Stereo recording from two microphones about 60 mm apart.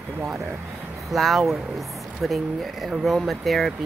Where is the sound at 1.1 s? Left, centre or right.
Centre.